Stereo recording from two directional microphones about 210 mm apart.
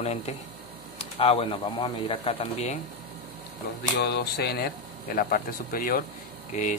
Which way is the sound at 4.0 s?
50° left (ahead or behind).